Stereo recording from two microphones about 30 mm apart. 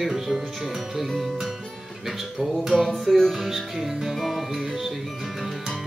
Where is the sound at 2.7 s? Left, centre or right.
Centre.